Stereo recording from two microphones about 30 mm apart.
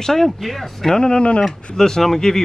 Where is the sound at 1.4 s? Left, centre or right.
Centre.